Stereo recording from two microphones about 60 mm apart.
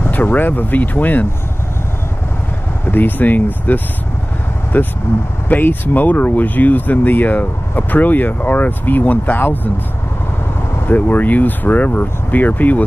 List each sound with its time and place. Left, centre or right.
0.0 s speech: left
2.8 s speech: left
10.9 s speech: left